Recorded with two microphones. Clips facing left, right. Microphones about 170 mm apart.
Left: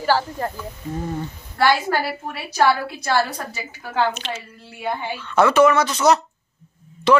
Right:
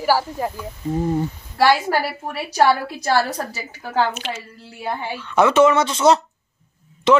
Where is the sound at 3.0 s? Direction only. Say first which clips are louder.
Right 2 dB; 35° right (ahead or behind).